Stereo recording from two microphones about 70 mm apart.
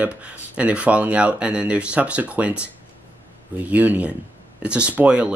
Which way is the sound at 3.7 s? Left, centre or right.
Right.